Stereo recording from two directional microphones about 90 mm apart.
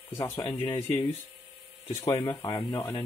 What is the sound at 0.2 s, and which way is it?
Speech, 45° left (ahead or behind).